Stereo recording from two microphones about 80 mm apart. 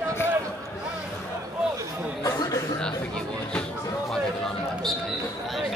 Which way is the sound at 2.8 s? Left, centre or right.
Centre.